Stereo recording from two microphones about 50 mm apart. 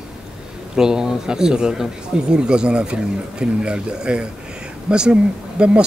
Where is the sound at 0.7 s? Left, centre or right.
Centre.